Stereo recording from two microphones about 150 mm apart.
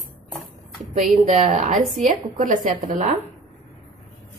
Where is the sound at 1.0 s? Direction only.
50° right (ahead or behind).